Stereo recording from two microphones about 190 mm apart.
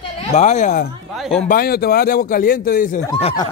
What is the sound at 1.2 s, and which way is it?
Speech, centre (ahead or behind).